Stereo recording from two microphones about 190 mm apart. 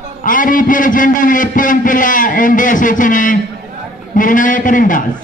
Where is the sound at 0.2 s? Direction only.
45° left (ahead or behind).